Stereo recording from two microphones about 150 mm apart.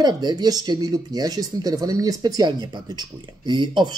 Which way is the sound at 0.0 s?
30° right (ahead or behind).